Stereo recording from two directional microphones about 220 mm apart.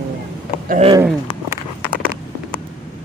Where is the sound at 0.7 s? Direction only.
30° right (ahead or behind).